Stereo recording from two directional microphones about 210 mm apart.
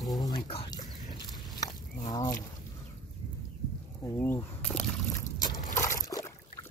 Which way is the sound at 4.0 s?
10° left (ahead or behind).